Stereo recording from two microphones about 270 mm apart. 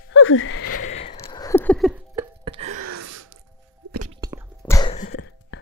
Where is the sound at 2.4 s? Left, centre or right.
Right.